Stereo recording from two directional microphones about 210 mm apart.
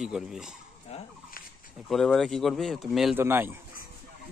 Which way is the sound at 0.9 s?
30° left (ahead or behind).